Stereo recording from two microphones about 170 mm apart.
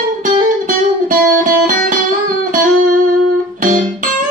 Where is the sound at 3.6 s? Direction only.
50° right (ahead or behind).